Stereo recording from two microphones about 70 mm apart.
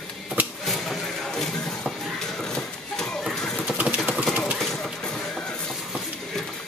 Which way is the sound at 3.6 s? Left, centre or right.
Centre.